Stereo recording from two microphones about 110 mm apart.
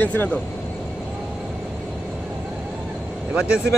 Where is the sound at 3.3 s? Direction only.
10° right (ahead or behind).